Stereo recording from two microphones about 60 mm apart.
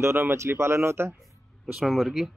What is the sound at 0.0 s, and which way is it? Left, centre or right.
Speech, right.